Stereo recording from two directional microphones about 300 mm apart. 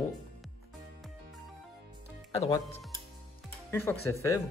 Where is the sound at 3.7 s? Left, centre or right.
Centre.